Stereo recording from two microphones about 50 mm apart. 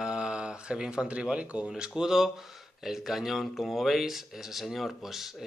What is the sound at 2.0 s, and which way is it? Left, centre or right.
Speech, centre.